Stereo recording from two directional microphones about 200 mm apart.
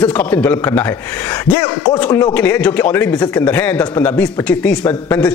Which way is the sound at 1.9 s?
10° left (ahead or behind).